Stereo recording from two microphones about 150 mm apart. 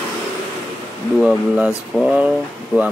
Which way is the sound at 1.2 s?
5° right (ahead or behind).